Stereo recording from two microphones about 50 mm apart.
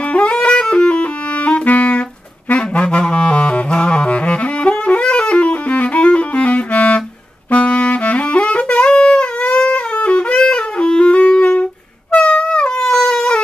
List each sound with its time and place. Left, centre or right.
0.1 s clarinet: left
2.5 s saxophone: left
12.1 s wind instrument: left
12.4 s shofar: centre